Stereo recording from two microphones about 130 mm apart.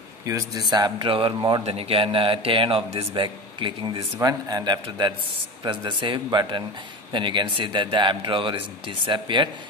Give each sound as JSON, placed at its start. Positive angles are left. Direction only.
{"t": 0.2, "sound": "a man's voice", "side_deg": -25}